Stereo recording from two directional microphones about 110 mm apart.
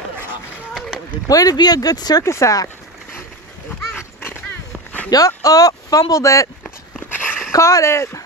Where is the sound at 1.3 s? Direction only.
35° left (ahead or behind).